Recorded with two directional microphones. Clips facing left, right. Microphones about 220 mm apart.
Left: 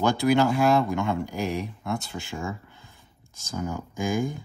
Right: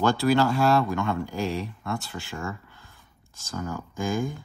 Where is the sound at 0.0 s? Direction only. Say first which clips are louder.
Even; 15° left (ahead or behind).